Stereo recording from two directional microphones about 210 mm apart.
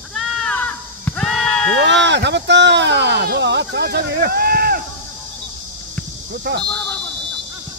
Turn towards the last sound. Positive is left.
turn(degrees=5)  # may be behind; listen again after turning